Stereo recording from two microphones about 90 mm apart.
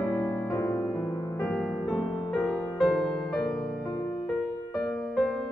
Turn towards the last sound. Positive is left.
turn(degrees=0)  # may be behind; listen again after turning